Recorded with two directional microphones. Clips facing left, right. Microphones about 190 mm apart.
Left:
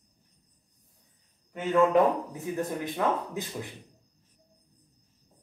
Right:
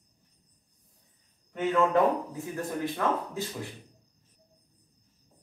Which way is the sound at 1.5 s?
15° left (ahead or behind).